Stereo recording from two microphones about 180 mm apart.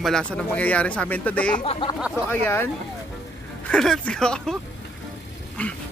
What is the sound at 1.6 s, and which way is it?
Speech, 30° left (ahead or behind).